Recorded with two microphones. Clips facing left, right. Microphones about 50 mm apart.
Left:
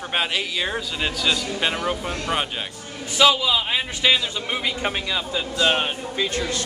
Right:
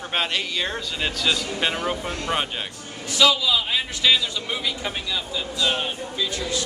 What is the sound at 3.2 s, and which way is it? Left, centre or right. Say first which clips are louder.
A man's voice: left 2 dB; left.